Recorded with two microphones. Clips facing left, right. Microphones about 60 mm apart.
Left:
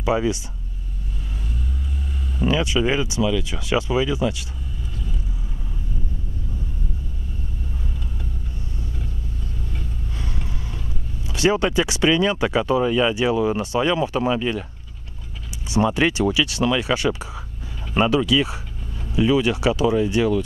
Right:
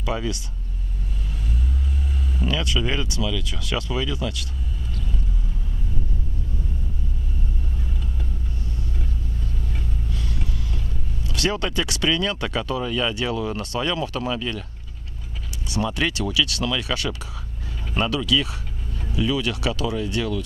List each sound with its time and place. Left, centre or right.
0.0 s speech: centre
2.4 s speech: centre
10.1 s vehicle: left
11.2 s speech: centre
15.7 s speech: left